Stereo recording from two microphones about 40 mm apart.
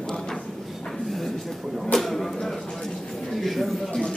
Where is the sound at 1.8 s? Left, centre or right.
Centre.